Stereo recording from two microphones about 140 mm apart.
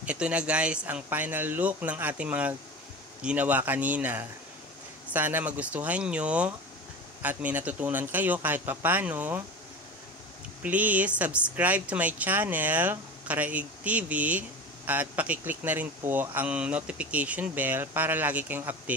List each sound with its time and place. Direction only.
0.0 s speech: 10° right (ahead or behind)
10.6 s speech: 10° right (ahead or behind)